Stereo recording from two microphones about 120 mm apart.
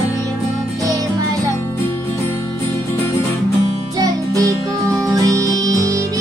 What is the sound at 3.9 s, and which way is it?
Music, 30° right (ahead or behind).